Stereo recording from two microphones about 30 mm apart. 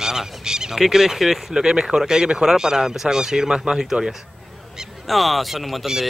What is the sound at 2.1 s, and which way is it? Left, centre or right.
Speech, right.